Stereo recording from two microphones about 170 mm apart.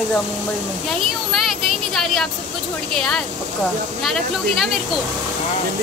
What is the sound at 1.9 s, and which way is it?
A woman's voice, centre (ahead or behind).